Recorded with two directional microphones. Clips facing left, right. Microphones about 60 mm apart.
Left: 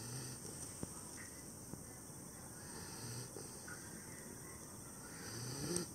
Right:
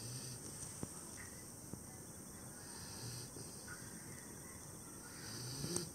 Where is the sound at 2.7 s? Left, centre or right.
Centre.